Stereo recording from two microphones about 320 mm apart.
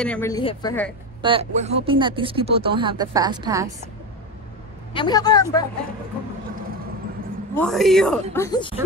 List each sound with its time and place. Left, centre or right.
0.0 s speech: centre
1.2 s speech: centre
4.9 s speech: centre
7.5 s speech: centre